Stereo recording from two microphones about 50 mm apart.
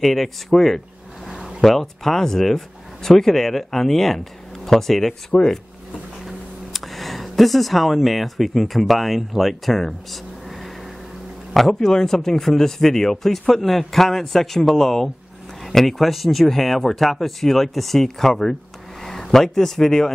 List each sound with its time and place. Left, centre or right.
0.0 s speech: centre
5.3 s speech: left
6.2 s speech: centre